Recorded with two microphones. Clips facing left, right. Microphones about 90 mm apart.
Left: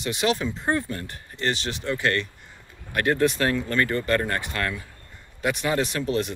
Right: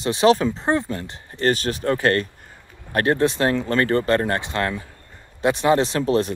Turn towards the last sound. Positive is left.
turn(degrees=-35)  # may be behind; listen again after turning